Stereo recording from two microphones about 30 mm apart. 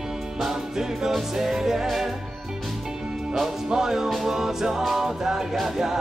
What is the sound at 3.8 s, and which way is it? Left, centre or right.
Music, centre.